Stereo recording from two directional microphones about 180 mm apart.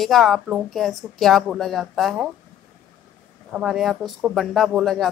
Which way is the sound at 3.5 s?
Centre (ahead or behind).